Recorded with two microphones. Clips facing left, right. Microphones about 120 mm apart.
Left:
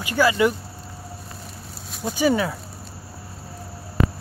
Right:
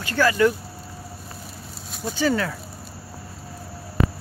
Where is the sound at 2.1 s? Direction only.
15° left (ahead or behind).